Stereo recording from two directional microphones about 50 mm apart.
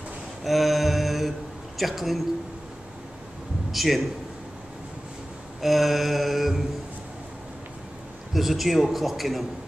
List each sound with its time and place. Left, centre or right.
0.4 s mantra: centre
1.8 s a man's voice: centre
3.7 s a man's voice: centre
5.6 s a man's voice: centre
8.3 s a man's voice: centre